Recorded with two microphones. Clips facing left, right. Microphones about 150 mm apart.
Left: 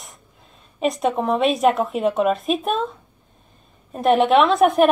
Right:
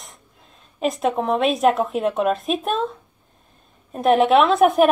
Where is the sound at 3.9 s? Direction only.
Centre (ahead or behind).